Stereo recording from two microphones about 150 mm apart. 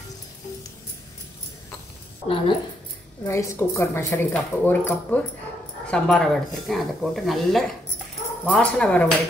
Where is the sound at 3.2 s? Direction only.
20° left (ahead or behind).